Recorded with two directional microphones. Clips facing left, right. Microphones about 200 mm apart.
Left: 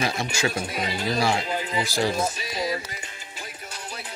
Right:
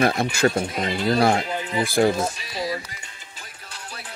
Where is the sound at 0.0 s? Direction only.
55° right (ahead or behind).